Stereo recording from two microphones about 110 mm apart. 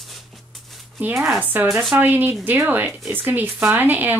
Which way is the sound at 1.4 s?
15° right (ahead or behind).